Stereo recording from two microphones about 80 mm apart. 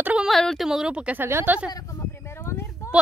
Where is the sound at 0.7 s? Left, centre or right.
Centre.